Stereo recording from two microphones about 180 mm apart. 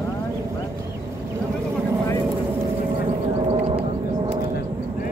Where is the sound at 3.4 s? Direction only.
30° right (ahead or behind).